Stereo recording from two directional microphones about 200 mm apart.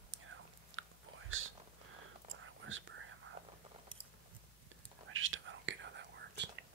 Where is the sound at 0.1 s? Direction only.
75° right (ahead or behind).